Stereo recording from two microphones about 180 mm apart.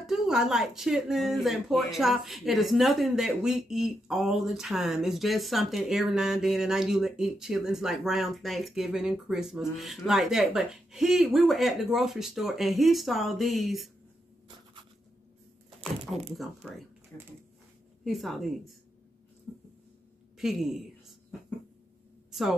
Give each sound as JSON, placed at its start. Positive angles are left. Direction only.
{"t": 0.0, "sound": "speech", "side_deg": 0}
{"t": 16.3, "sound": "speech", "side_deg": 0}
{"t": 17.1, "sound": "speech", "side_deg": 15}
{"t": 18.0, "sound": "speech", "side_deg": 0}
{"t": 20.3, "sound": "speech", "side_deg": 0}